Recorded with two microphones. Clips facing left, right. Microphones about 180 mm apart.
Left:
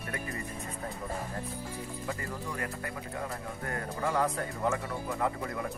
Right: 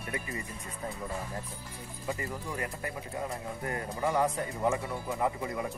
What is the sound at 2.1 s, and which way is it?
Speech, 20° right (ahead or behind).